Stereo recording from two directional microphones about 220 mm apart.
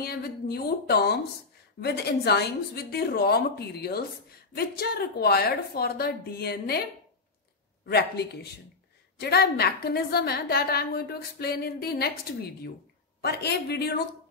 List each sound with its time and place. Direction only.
0.0 s a woman's voice: 45° left (ahead or behind)
7.9 s a woman's voice: 45° left (ahead or behind)